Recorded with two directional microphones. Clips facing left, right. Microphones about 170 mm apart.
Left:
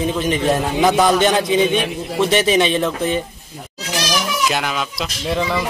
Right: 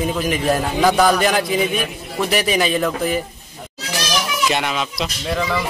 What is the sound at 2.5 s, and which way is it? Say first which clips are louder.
Speech: left 2 dB; centre (ahead or behind).